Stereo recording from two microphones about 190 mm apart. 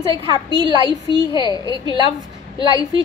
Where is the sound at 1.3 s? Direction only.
20° left (ahead or behind).